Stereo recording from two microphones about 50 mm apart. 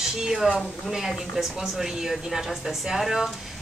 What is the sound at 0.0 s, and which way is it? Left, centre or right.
Speech, centre.